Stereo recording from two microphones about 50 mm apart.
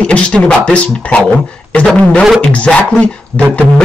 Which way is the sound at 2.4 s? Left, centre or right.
Left.